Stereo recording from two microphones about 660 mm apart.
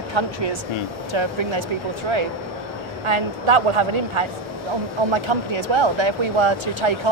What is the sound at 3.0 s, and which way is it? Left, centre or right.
Speech, right.